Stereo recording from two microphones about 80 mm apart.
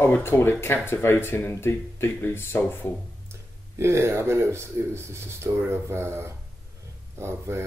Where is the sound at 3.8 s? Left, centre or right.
Right.